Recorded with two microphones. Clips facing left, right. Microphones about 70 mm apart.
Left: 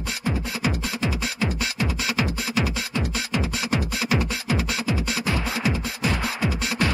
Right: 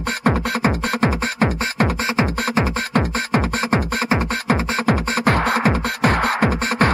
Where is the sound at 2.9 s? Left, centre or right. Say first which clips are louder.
Right 8 dB; right.